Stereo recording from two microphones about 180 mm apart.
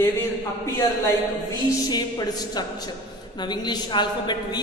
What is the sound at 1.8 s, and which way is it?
A man's voice, 20° left (ahead or behind).